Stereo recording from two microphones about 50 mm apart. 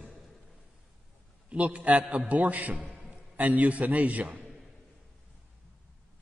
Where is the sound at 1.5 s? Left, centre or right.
Right.